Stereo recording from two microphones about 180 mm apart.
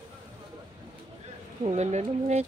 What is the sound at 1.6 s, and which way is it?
Speech, 40° right (ahead or behind).